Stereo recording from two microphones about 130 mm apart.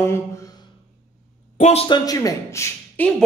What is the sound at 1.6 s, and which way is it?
Speech, 55° left (ahead or behind).